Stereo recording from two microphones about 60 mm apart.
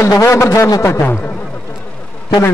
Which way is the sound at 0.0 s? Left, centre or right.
Left.